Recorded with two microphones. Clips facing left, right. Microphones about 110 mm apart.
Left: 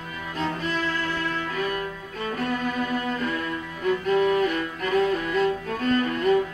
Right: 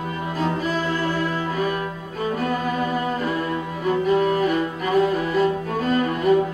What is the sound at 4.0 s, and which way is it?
Music, 5° right (ahead or behind).